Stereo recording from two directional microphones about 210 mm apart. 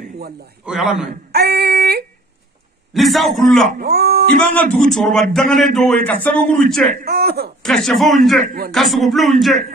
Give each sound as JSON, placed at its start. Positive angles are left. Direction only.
{"t": 0.7, "sound": "a man's voice", "side_deg": 0}
{"t": 1.3, "sound": "female singing", "side_deg": -50}
{"t": 2.9, "sound": "a man's voice", "side_deg": 0}
{"t": 3.7, "sound": "speech", "side_deg": -45}
{"t": 4.8, "sound": "a man's voice", "side_deg": 0}
{"t": 6.9, "sound": "speech", "side_deg": -50}
{"t": 7.6, "sound": "a man's voice", "side_deg": 0}